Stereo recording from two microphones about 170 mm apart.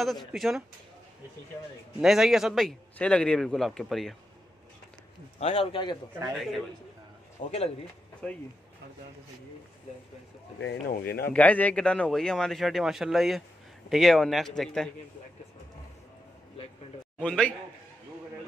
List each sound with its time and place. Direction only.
0.0 s a man's voice: centre (ahead or behind)
2.0 s a man's voice: centre (ahead or behind)
5.4 s a man's voice: 35° left (ahead or behind)
7.4 s speech: 50° left (ahead or behind)
8.2 s a man's voice: 5° left (ahead or behind)
10.6 s speech: 80° left
11.3 s a man's voice: 10° left (ahead or behind)
17.2 s a man's voice: 5° left (ahead or behind)